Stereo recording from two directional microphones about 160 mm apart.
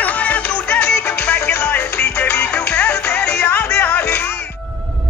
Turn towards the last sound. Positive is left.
turn(degrees=5)  # may be behind; listen again after turning